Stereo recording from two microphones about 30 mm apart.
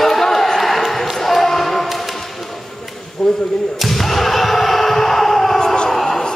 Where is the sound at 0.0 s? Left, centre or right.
Centre.